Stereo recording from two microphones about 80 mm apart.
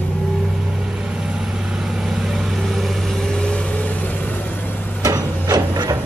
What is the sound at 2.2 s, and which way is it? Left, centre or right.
Vehicle, centre.